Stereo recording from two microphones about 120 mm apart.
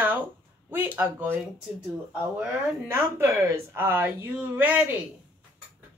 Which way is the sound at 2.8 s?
20° right (ahead or behind).